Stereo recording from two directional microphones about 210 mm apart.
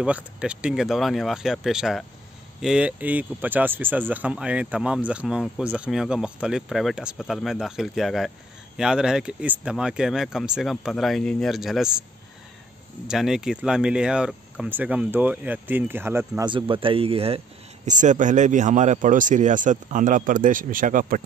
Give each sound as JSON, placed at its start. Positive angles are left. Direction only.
{"t": 0.0, "sound": "speech", "side_deg": -5}
{"t": 13.0, "sound": "speech", "side_deg": 0}
{"t": 16.4, "sound": "speech", "side_deg": -25}